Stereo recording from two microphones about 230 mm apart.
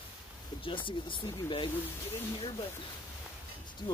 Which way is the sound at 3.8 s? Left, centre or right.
Centre.